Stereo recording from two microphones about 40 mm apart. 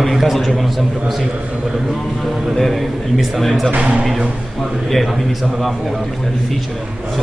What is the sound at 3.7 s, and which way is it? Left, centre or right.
Speech, right.